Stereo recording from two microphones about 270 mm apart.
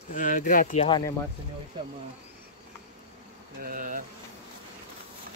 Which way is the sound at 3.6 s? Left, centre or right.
Right.